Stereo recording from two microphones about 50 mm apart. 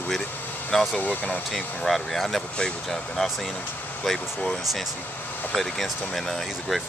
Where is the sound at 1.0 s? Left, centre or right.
Left.